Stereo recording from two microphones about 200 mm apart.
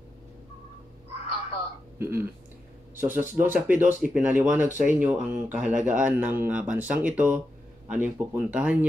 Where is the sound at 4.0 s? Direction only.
5° right (ahead or behind).